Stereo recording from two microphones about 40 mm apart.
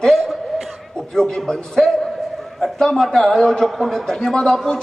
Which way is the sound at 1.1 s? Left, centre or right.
Centre.